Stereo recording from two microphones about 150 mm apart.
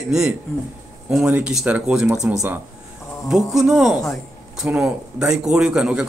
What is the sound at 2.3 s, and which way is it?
Speech, 20° right (ahead or behind).